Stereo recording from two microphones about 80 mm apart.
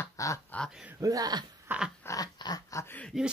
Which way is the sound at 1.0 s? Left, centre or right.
Right.